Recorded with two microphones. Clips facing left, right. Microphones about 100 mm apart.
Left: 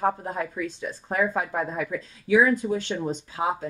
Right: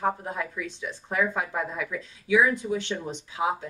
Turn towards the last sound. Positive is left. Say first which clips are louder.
# left 1 dB
turn(degrees=40)  # may be behind; listen again after turning